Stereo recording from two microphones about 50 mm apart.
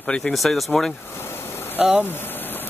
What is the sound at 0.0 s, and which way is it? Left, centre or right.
Speech, left.